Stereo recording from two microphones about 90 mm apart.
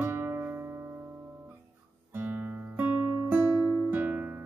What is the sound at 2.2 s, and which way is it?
Guitar, 20° right (ahead or behind).